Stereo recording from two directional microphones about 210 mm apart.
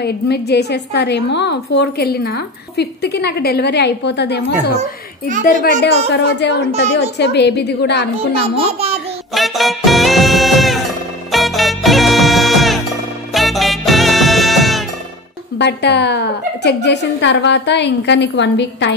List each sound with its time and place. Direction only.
0.0 s a woman's voice: 50° left (ahead or behind)
6.1 s a woman's voice: 55° left (ahead or behind)
8.5 s a child's voice: 30° right (ahead or behind)
9.3 s music: centre (ahead or behind)
15.5 s a woman's voice: 55° left (ahead or behind)